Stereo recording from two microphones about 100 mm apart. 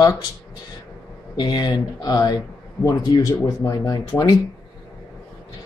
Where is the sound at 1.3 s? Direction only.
45° left (ahead or behind).